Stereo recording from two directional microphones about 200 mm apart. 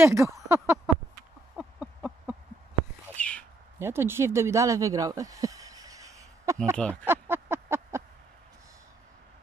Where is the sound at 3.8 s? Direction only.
10° right (ahead or behind).